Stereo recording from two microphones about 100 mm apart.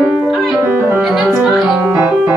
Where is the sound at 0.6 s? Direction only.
20° right (ahead or behind).